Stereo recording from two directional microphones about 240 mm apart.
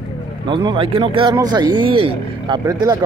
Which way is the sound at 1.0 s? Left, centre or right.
Right.